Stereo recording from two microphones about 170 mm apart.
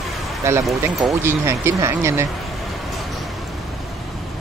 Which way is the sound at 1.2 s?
15° right (ahead or behind).